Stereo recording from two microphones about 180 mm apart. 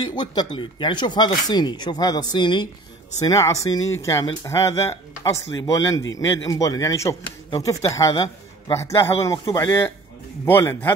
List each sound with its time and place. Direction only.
0.0 s speech: 25° left (ahead or behind)